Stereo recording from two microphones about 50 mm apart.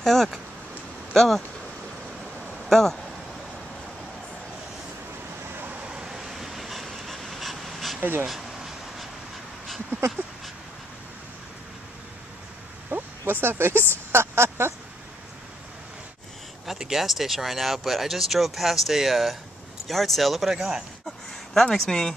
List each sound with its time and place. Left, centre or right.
0.0 s speech: centre
2.7 s speech: centre
5.5 s vehicle: right
5.9 s vehicle: centre
8.0 s speech: right
8.3 s a sound: centre
9.8 s a sound: right
12.9 s a sound: right
13.3 s speech: right
16.6 s speech: centre
21.3 s speech: centre